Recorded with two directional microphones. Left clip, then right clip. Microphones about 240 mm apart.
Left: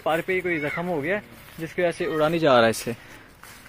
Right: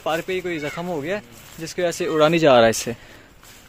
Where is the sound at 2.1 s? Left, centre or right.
Right.